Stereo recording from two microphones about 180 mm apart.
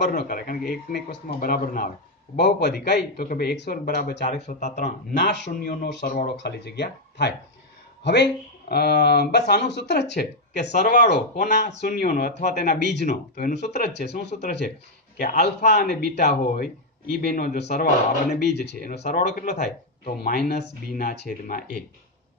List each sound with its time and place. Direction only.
0.0 s speech: 60° left (ahead or behind)
2.3 s speech: 70° left (ahead or behind)
4.2 s speech: 40° left (ahead or behind)
5.1 s speech: 70° left (ahead or behind)
6.1 s speech: 65° left (ahead or behind)
11.7 s speech: 55° left (ahead or behind)
12.5 s speech: 65° left (ahead or behind)
15.6 s speech: 40° left (ahead or behind)
16.2 s speech: 55° left (ahead or behind)
18.3 s speech: 65° left (ahead or behind); by 19.7 s 40° left (ahead or behind)
20.2 s speech: 65° left (ahead or behind)